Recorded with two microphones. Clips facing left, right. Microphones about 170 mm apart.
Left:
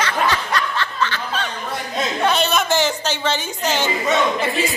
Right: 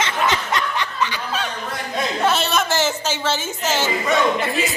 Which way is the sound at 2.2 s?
Centre (ahead or behind).